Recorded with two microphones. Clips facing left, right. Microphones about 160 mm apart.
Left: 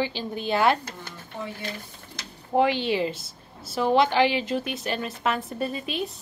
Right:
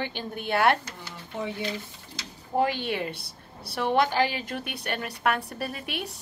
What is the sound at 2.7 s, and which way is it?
A woman's voice, 55° right (ahead or behind).